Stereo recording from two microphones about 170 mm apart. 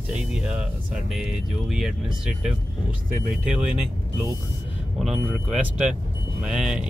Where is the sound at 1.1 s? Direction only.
5° right (ahead or behind).